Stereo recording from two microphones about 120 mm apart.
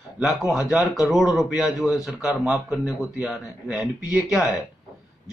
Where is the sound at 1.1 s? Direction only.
5° right (ahead or behind).